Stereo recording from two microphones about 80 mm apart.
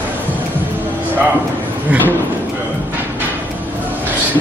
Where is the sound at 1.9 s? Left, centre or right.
Centre.